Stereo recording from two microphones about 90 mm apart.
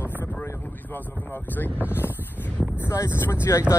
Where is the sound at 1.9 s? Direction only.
25° left (ahead or behind).